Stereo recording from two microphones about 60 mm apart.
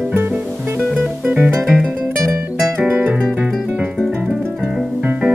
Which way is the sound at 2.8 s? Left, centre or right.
Right.